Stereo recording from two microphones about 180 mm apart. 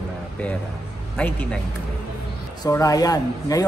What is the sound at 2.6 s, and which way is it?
Speech, 20° left (ahead or behind).